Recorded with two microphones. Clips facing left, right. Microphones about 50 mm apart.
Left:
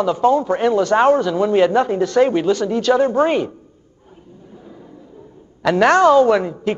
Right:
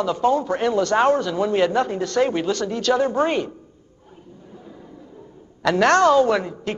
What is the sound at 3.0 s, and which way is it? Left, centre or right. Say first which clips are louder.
Speech: left 4 dB; left.